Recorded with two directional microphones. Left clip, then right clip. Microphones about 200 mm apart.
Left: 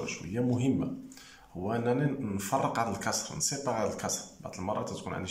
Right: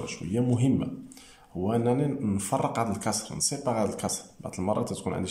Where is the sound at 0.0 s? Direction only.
15° right (ahead or behind).